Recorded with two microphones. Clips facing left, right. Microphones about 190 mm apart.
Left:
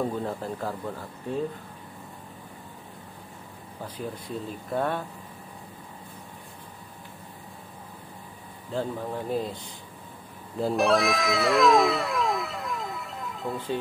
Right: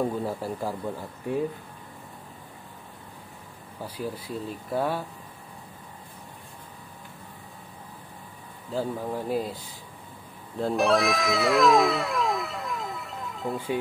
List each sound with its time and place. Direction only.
0.0 s speech: 5° right (ahead or behind)
3.8 s speech: 10° right (ahead or behind)
8.7 s speech: 5° right (ahead or behind)
10.6 s cat: centre (ahead or behind)